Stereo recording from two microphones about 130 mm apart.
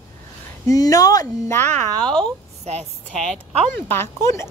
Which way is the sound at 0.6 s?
25° left (ahead or behind).